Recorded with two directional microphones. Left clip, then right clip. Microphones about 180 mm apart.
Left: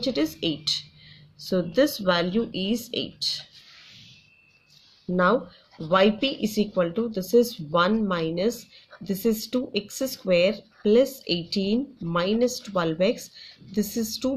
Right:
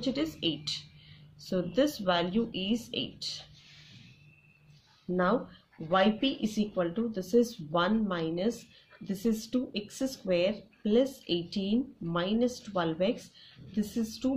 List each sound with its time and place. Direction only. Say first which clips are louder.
0.0 s speech: left 6 dB; 25° left (ahead or behind)
5.1 s speech: left 7 dB; 35° left (ahead or behind)